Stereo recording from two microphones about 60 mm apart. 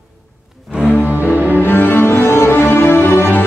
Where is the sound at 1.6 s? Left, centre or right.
Left.